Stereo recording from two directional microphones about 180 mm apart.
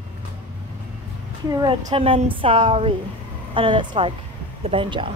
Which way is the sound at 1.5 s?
25° right (ahead or behind).